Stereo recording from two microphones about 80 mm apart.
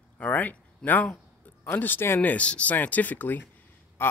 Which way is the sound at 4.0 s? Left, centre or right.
Left.